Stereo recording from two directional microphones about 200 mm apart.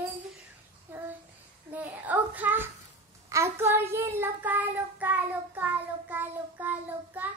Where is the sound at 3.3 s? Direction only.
15° right (ahead or behind).